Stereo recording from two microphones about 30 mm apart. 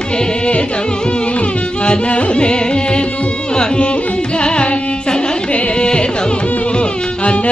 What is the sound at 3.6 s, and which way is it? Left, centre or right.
Carnatic music, left.